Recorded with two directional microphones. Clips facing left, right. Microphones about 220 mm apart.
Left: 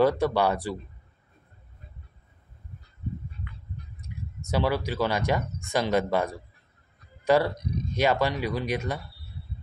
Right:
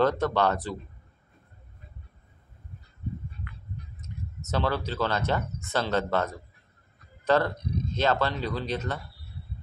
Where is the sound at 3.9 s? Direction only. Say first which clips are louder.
Even; 10° left (ahead or behind).